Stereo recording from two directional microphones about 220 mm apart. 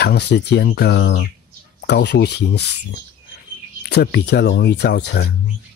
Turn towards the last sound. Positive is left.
turn(degrees=50)  # may be behind; listen again after turning